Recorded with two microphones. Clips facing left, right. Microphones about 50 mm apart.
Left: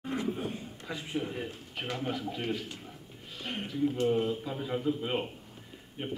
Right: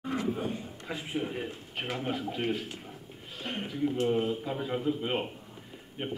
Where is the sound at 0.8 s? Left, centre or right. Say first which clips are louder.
Right 1 dB; centre.